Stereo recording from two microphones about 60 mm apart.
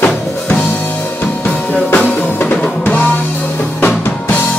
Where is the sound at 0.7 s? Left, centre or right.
Left.